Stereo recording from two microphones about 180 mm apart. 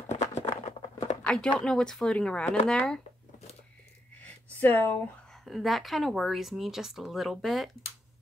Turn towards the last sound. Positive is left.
turn(degrees=0)  # may be behind; listen again after turning